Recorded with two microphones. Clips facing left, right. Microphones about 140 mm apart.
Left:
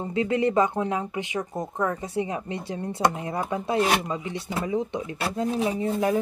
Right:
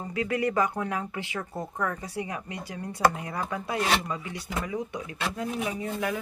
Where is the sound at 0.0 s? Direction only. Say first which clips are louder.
Left 4 dB; 25° left (ahead or behind).